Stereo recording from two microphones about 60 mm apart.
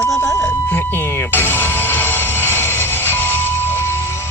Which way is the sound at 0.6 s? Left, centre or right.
Left.